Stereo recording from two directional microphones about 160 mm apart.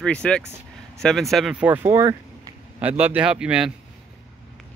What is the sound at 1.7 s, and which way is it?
A man's voice, 15° right (ahead or behind).